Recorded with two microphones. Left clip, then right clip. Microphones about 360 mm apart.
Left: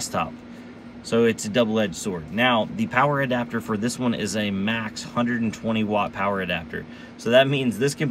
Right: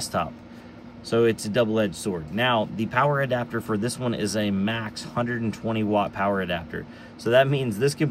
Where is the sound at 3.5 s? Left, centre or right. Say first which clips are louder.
Even; left.